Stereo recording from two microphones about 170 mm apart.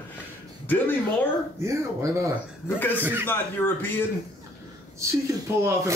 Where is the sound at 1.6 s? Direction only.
15° right (ahead or behind).